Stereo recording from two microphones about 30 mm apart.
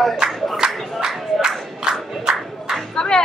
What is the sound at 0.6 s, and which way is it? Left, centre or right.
Music, right.